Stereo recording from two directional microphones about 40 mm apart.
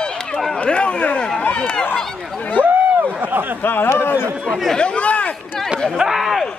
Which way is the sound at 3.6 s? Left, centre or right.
Left.